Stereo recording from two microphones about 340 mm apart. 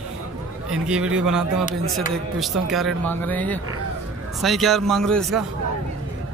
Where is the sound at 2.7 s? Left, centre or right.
Centre.